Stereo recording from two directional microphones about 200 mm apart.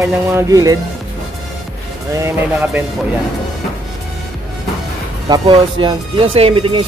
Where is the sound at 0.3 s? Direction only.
15° right (ahead or behind).